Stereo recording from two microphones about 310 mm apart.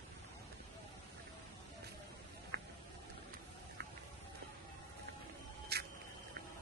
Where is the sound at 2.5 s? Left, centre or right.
Right.